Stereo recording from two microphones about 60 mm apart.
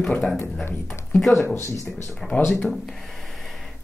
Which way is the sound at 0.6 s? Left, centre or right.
Left.